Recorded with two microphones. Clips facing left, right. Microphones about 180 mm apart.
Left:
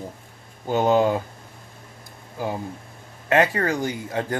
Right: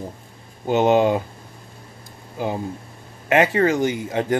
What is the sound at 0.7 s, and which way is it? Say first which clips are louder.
Speech: right 3 dB; 20° right (ahead or behind).